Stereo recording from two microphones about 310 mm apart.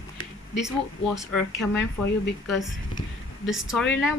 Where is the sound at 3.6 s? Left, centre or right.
Centre.